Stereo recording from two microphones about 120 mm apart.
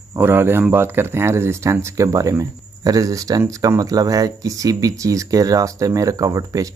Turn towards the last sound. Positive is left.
turn(degrees=-30)  # may be behind; listen again after turning